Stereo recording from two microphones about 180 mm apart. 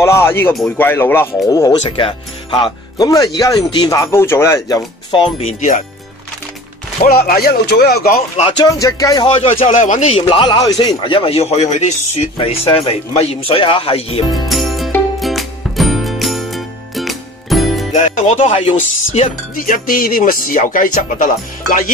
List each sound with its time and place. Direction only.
0.0 s speech: 15° left (ahead or behind)
1.8 s speech: 30° left (ahead or behind)
7.1 s speech: 60° left (ahead or behind)
8.4 s speech: 25° left (ahead or behind)
9.8 s speech: 45° left (ahead or behind)
14.5 s music: centre (ahead or behind)
17.9 s speech: 40° left (ahead or behind)
19.5 s speech: 50° left (ahead or behind)